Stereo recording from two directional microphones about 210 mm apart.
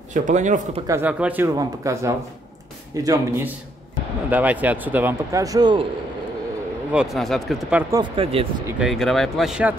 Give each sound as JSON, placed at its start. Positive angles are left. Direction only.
{"t": 0.1, "sound": "speech", "side_deg": -35}
{"t": 0.8, "sound": "a man's voice", "side_deg": -10}
{"t": 6.9, "sound": "speech", "side_deg": -5}
{"t": 7.9, "sound": "speech", "side_deg": -25}
{"t": 8.6, "sound": "speech", "side_deg": -5}